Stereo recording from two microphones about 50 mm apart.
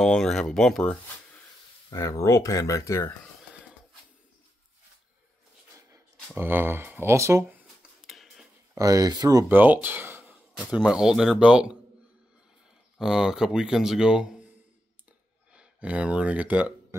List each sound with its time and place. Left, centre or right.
0.0 s speech: centre
1.9 s speech: left
6.3 s speech: right
7.1 s speech: right
8.1 s a sound: centre
8.8 s speech: right
9.5 s speech: right
10.8 s speech: centre
13.0 s speech: centre
15.5 s speech: right